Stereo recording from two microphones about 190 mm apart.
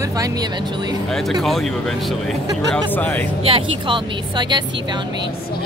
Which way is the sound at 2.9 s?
10° left (ahead or behind).